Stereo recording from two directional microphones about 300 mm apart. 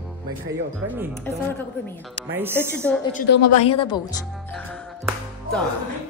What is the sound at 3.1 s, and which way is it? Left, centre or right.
Speech, left.